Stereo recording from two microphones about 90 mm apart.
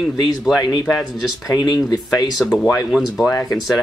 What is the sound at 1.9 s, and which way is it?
Speech, 40° left (ahead or behind).